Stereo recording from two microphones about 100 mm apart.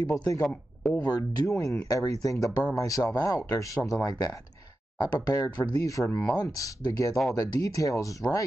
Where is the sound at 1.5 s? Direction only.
30° left (ahead or behind).